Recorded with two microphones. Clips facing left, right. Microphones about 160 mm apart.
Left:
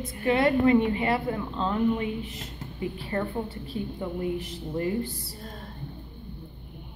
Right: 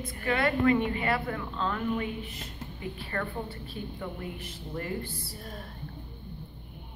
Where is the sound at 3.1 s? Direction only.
20° left (ahead or behind).